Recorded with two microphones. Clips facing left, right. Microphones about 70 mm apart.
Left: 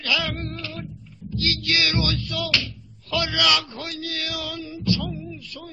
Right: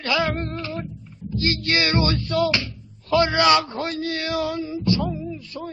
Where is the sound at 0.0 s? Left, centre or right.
Right.